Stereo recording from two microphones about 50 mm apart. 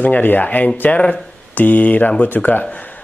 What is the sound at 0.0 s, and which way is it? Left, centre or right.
Speech, left.